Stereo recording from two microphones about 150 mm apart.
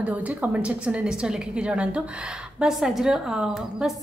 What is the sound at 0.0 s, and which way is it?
A woman's voice, 10° right (ahead or behind).